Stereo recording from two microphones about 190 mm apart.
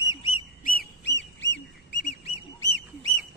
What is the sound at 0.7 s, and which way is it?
Duck, 60° left (ahead or behind).